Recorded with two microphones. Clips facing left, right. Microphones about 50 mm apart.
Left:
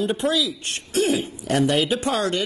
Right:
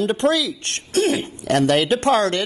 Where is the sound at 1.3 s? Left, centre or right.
Right.